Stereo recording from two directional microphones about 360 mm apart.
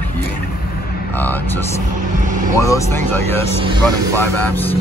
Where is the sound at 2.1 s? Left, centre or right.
Right.